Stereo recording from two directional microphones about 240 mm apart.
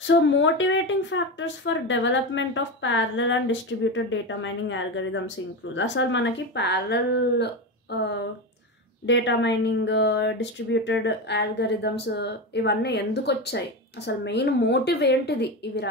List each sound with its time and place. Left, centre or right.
0.0 s speech: left